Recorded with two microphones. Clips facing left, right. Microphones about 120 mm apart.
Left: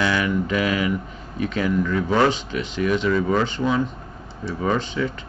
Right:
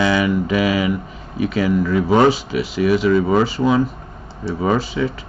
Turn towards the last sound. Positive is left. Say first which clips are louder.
# right 4 dB
turn(degrees=-5)  # may be behind; listen again after turning